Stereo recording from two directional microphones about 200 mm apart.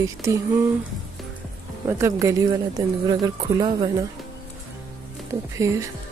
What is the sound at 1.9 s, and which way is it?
Speech, 15° right (ahead or behind).